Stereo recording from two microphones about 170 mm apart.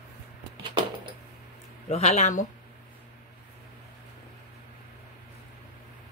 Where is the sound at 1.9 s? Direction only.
40° left (ahead or behind).